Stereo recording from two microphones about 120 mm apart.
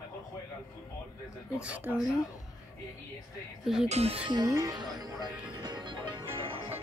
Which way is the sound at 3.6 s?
5° right (ahead or behind).